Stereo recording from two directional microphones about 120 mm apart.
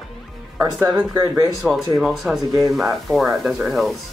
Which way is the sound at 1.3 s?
30° right (ahead or behind).